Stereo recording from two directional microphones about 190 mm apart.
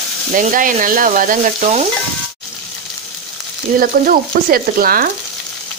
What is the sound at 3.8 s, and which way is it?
A woman's voice, 50° right (ahead or behind).